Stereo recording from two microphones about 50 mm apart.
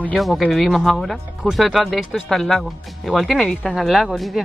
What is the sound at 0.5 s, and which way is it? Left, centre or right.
Speech, centre.